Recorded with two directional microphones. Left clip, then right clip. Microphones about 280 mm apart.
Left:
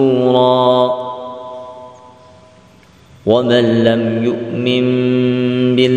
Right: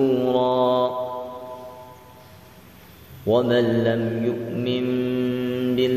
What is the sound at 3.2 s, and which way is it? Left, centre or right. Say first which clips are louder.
Mantra: left 7 dB; left.